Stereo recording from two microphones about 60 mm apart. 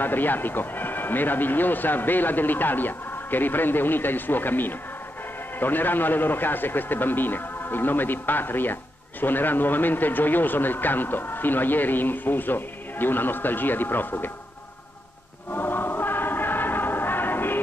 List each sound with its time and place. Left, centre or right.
0.0 s a man's voice: left
15.5 s music: left